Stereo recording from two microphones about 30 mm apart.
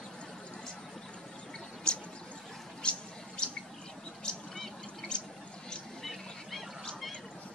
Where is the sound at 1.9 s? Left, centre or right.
Left.